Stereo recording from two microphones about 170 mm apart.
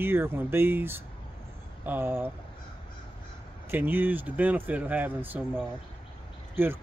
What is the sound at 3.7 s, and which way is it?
Speech, 10° right (ahead or behind).